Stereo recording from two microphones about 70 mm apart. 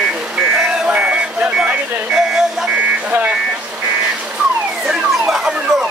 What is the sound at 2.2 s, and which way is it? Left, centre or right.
Vehicle, centre.